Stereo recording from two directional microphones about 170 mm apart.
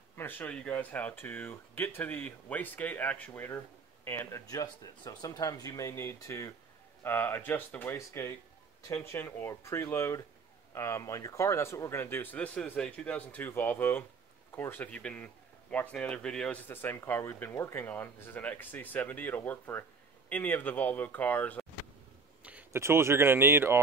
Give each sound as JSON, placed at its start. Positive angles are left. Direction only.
{"t": 0.1, "sound": "speech", "side_deg": 10}
{"t": 22.4, "sound": "speech", "side_deg": -10}